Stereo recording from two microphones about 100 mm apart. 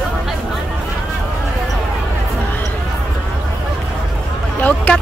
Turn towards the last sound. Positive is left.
turn(degrees=15)  # may be behind; listen again after turning